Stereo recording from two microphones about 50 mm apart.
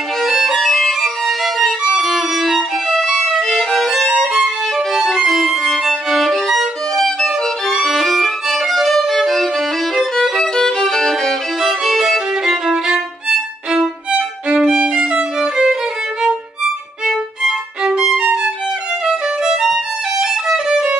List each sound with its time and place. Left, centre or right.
0.2 s violin: centre
7.0 s music: centre
7.8 s violin: centre
11.6 s violin: centre
13.7 s music: centre
14.7 s violin: centre